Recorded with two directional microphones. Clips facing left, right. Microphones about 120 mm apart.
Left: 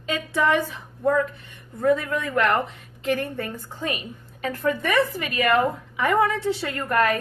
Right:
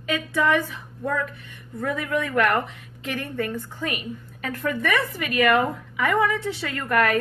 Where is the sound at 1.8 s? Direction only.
30° left (ahead or behind).